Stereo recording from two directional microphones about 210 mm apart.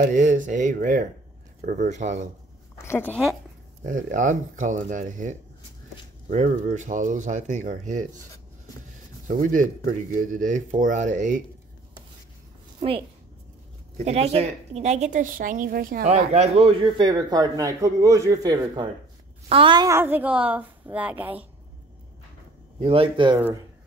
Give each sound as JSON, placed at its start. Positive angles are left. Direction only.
{"t": 0.1, "sound": "speech", "side_deg": -35}
{"t": 2.8, "sound": "speech", "side_deg": 10}
{"t": 3.8, "sound": "speech", "side_deg": -40}
{"t": 9.3, "sound": "speech", "side_deg": -40}
{"t": 13.9, "sound": "a woman's voice", "side_deg": -30}
{"t": 22.8, "sound": "a woman's voice", "side_deg": -25}